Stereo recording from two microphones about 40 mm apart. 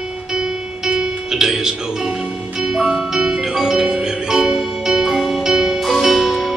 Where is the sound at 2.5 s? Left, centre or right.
Centre.